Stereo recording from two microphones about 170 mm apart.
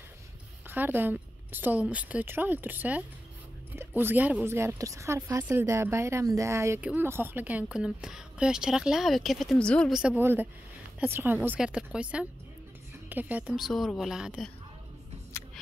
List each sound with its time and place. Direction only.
0.7 s a woman's voice: 10° right (ahead or behind)